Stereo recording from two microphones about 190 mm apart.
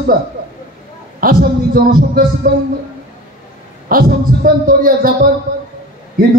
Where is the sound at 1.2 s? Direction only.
50° right (ahead or behind).